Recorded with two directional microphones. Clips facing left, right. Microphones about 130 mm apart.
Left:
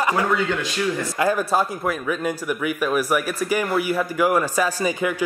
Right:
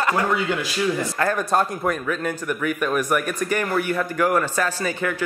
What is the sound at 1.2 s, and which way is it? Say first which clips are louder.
A man's voice: left 1 dB; 5° left (ahead or behind).